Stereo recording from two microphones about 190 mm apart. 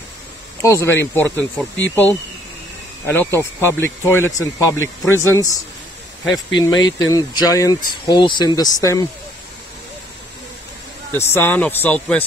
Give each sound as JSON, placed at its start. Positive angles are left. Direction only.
{"t": 0.6, "sound": "speech", "side_deg": 15}
{"t": 11.3, "sound": "speech", "side_deg": 10}